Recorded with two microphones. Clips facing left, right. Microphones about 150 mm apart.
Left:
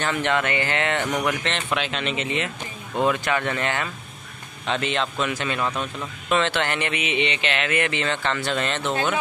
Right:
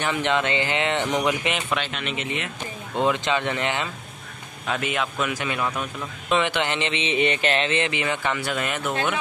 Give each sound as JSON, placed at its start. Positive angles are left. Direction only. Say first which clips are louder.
{"t": 0.0, "sound": "speech", "louder": "even", "side_deg": -15}
{"t": 1.7, "sound": "a man's voice", "louder": "left 2 dB", "side_deg": 0}
{"t": 2.9, "sound": "speech", "louder": "even", "side_deg": -20}
{"t": 4.6, "sound": "speech", "louder": "left 1 dB", "side_deg": -5}
{"t": 7.2, "sound": "a sound", "louder": "right 5 dB", "side_deg": -45}
{"t": 7.6, "sound": "speech", "louder": "even", "side_deg": -20}